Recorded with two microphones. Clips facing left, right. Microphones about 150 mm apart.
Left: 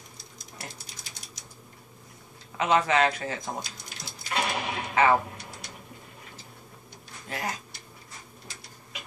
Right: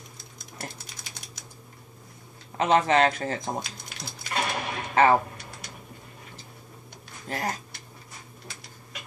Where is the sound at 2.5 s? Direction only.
40° right (ahead or behind).